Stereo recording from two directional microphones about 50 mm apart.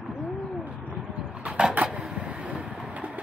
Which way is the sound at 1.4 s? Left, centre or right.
Right.